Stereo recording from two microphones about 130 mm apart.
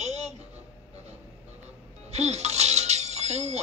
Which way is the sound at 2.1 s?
55° right (ahead or behind).